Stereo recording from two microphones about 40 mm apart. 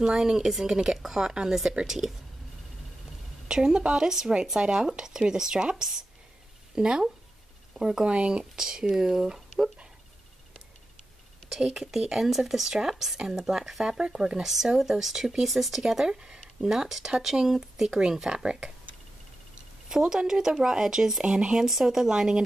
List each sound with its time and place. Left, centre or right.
0.0 s speech: centre
3.4 s a woman's voice: centre
11.7 s speech: centre
13.8 s a woman's voice: right
18.4 s a woman's voice: right
20.2 s speech: centre
21.5 s speech: centre